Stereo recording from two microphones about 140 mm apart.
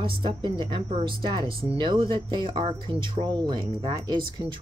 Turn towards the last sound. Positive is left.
turn(degrees=-35)  # may be behind; listen again after turning